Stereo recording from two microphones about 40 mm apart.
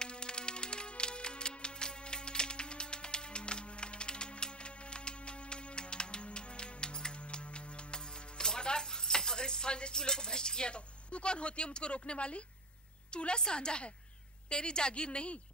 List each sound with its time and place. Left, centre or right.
0.0 s music: left
13.1 s a woman's voice: left